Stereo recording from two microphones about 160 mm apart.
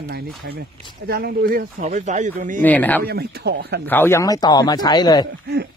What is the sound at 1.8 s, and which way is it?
Speech, 45° right (ahead or behind).